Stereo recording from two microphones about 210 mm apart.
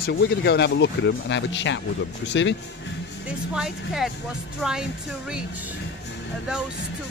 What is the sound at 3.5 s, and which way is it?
Speech, centre (ahead or behind).